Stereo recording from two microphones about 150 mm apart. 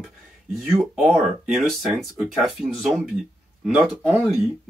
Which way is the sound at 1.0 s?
5° right (ahead or behind).